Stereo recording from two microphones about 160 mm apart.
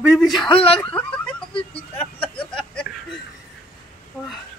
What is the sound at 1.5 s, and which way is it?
Speech, 35° left (ahead or behind).